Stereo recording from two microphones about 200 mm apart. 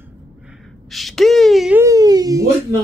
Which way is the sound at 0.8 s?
Centre (ahead or behind).